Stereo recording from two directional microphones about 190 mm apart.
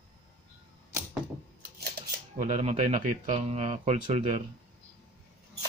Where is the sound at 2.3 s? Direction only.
40° right (ahead or behind).